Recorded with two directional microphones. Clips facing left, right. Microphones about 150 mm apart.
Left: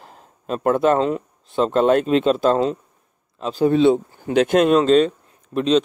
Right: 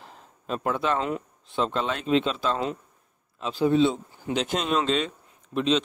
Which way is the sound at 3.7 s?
60° left (ahead or behind).